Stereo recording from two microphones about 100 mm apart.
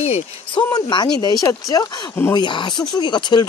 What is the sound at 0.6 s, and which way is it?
Speech, 45° left (ahead or behind).